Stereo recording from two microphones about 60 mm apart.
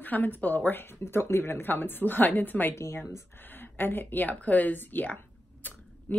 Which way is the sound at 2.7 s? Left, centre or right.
Left.